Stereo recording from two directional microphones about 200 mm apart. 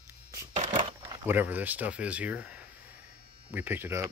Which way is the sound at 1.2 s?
10° right (ahead or behind).